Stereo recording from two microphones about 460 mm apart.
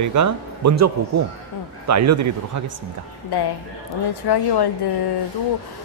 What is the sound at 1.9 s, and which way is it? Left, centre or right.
Speech, right.